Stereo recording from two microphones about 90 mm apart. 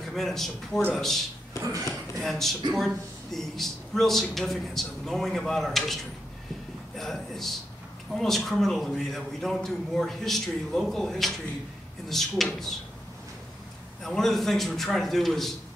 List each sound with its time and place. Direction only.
0.1 s speech: 5° left (ahead or behind)
1.6 s speech: 40° right (ahead or behind)
2.1 s speech: 5° left (ahead or behind)
7.0 s speech: 5° left (ahead or behind)
14.0 s speech: 5° left (ahead or behind)